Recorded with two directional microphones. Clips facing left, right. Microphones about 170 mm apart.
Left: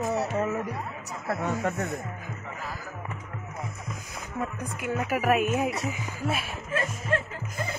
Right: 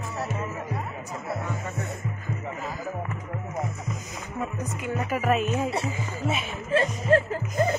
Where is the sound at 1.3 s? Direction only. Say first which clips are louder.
Left 6 dB; 80° left.